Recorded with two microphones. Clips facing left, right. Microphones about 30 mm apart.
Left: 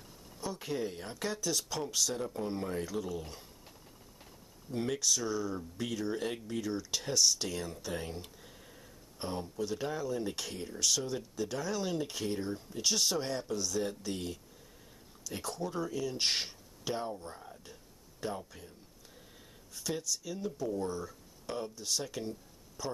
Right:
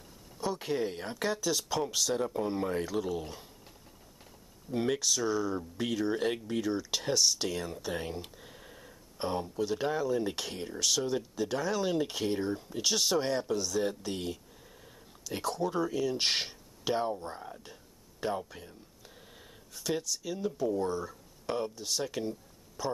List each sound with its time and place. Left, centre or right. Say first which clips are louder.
0.6 s speech: right 1 dB; right
4.7 s speech: right 3 dB; centre
13.2 s speech: right 5 dB; right
15.5 s speech: right 5 dB; centre
16.9 s speech: right 6 dB; right
18.2 s a sound: right 5 dB; right
19.7 s speech: right 3 dB; centre